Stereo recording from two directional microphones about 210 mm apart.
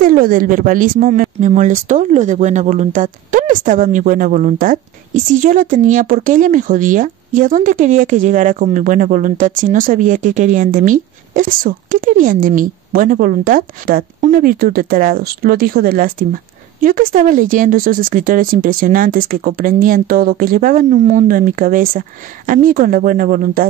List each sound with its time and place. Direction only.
0.0 s speech: 40° right (ahead or behind)